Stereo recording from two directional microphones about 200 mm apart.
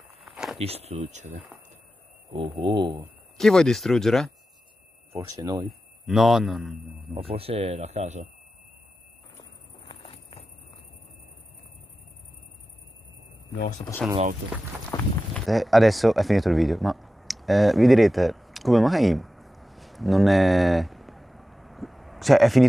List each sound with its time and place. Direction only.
0.2 s a sound: centre (ahead or behind)
0.6 s speech: 30° right (ahead or behind)
2.5 s speech: 25° right (ahead or behind)
3.3 s speech: centre (ahead or behind)
5.1 s speech: 15° right (ahead or behind)
5.7 s speech: centre (ahead or behind)
7.2 s speech: 30° right (ahead or behind)
9.8 s a sound: 30° left (ahead or behind)
13.6 s speech: 40° left (ahead or behind)
14.9 s a sound: centre (ahead or behind)